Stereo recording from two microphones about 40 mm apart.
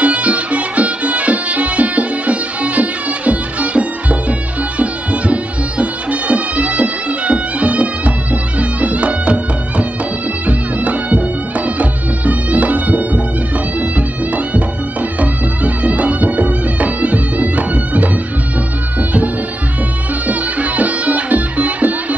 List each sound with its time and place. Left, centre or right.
0.0 s music: right